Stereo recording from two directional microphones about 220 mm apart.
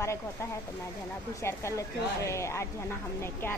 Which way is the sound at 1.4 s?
10° left (ahead or behind).